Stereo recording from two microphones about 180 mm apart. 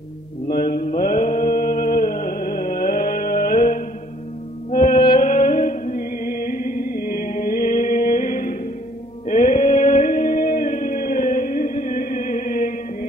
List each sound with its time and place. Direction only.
0.5 s mantra: 55° left (ahead or behind)
4.6 s music: 50° left (ahead or behind)
9.3 s a sound: 40° left (ahead or behind)
10.6 s music: 45° left (ahead or behind)